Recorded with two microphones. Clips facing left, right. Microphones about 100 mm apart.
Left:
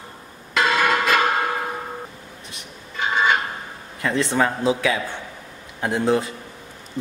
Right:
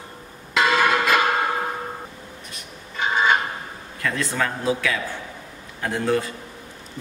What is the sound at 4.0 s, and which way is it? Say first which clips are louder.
A man's voice: left 4 dB; 25° left (ahead or behind).